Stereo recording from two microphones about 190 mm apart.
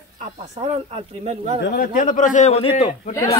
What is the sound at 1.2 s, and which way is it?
Speech, 35° right (ahead or behind).